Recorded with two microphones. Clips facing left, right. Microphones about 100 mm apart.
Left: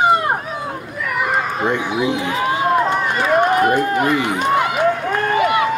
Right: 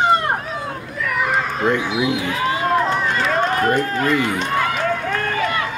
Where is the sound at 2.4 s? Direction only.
15° left (ahead or behind).